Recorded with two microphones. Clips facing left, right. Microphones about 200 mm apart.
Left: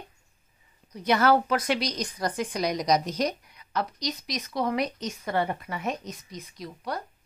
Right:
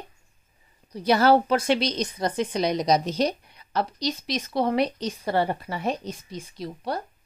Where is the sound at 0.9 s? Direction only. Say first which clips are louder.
Right 3 dB; 30° right (ahead or behind).